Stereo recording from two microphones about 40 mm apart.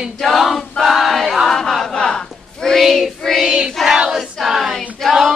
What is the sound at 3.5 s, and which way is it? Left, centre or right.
Child singing, right.